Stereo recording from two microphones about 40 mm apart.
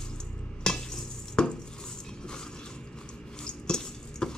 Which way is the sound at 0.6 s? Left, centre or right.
Centre.